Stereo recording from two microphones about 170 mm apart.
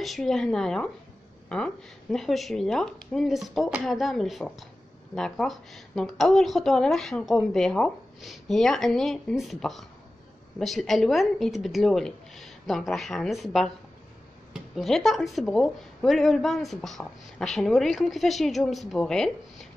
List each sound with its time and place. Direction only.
0.0 s speech: centre (ahead or behind)